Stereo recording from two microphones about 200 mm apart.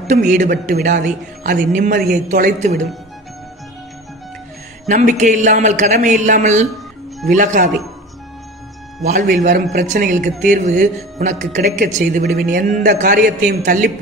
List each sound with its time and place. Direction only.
0.1 s speech: 40° right (ahead or behind)
4.8 s speech: 40° right (ahead or behind)
9.0 s speech: 40° right (ahead or behind)